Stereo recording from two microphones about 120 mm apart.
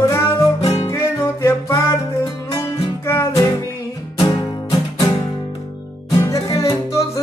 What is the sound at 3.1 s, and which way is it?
Music, 20° left (ahead or behind).